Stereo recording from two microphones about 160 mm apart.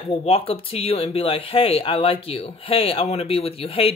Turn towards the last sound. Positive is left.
turn(degrees=35)  # may be behind; listen again after turning